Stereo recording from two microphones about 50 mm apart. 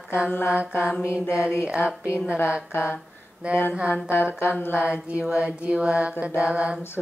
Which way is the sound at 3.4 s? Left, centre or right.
Right.